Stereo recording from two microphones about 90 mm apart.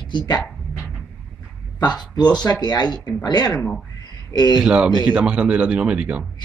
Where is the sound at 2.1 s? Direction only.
50° left (ahead or behind).